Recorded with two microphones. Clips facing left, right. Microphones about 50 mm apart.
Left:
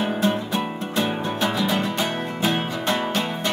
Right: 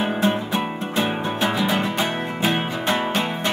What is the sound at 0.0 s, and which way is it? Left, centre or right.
Music, right.